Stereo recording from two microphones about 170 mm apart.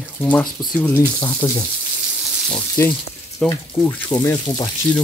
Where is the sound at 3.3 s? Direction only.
10° left (ahead or behind).